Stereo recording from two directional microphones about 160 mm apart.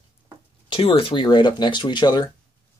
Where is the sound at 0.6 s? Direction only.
35° left (ahead or behind).